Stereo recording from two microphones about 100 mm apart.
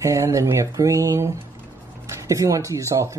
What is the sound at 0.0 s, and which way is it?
Speech, 30° right (ahead or behind).